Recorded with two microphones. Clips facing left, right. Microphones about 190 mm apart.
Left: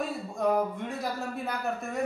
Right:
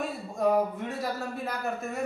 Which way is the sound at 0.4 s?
Centre (ahead or behind).